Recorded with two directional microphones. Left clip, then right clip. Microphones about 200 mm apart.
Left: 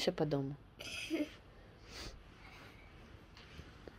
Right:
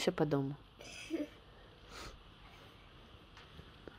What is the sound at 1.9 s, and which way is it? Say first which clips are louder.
Snort: even; 20° right (ahead or behind).